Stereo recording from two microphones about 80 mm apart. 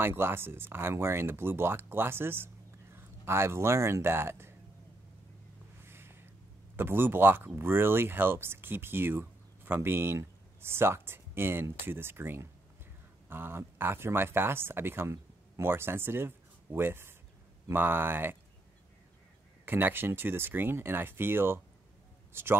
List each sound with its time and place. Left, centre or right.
0.0 s speech: right
5.9 s a sound: right
6.8 s speech: right
19.6 s speech: right